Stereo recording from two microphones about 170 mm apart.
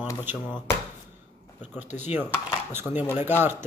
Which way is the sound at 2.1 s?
15° right (ahead or behind).